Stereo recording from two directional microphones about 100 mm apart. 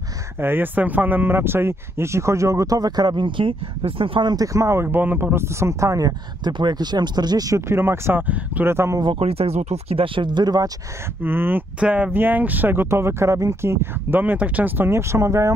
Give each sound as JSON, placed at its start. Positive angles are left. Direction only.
{"t": 0.4, "sound": "speech", "side_deg": -20}
{"t": 9.2, "sound": "speech", "side_deg": -85}
{"t": 11.2, "sound": "speech", "side_deg": -20}